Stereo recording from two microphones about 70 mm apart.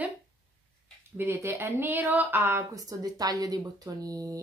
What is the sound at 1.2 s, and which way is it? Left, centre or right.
Speech, right.